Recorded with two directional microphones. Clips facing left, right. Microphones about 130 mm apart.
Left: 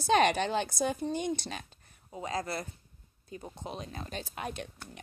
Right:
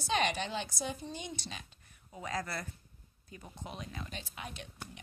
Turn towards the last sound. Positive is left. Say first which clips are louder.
# left 7 dB
turn(degrees=50)  # may be behind; listen again after turning